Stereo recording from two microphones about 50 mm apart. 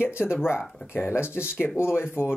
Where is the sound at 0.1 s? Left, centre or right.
Left.